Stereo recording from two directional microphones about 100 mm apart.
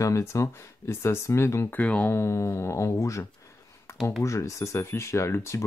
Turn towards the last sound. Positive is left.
turn(degrees=30)  # may be behind; listen again after turning